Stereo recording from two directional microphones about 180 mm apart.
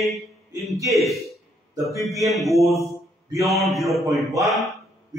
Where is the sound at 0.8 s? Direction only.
Centre (ahead or behind).